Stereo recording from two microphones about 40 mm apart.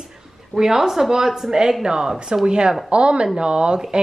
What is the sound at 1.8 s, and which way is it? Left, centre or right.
A woman's voice, centre.